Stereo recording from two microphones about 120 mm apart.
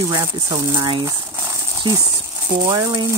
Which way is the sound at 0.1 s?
30° right (ahead or behind).